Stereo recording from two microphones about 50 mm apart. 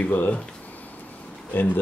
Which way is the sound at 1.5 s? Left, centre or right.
Left.